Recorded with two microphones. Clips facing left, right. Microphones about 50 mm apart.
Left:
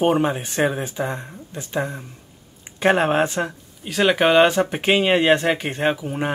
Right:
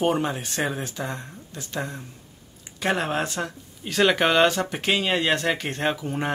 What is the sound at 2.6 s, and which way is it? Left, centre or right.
Speech, left.